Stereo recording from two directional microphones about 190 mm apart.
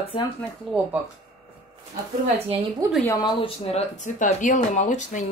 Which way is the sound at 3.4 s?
35° left (ahead or behind).